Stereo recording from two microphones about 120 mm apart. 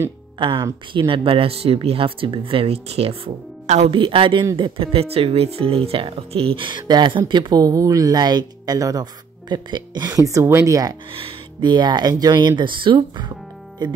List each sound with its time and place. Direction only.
0.4 s speech: 40° right (ahead or behind)
3.6 s a woman's voice: 70° right (ahead or behind)
3.9 s a woman's voice: 45° right (ahead or behind); by 11.0 s 30° right (ahead or behind)
11.1 s speech: 50° right (ahead or behind)